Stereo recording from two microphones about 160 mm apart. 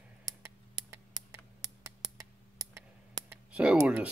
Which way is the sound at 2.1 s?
20° right (ahead or behind).